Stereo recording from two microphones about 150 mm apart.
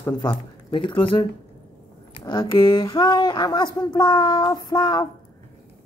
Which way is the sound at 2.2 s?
25° left (ahead or behind).